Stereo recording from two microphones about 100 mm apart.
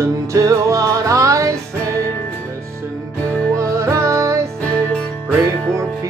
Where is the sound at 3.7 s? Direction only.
30° right (ahead or behind).